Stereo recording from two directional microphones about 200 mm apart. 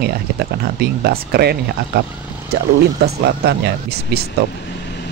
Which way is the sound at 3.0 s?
55° right (ahead or behind).